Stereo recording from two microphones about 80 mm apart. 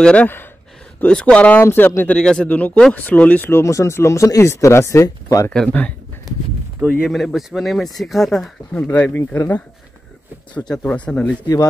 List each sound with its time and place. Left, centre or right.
0.0 s speech: centre
1.6 s speech: left
2.1 s speech: centre; by 5.5 s left
5.5 s speech: centre
6.9 s speech: centre
8.7 s speech: left
10.9 s speech: centre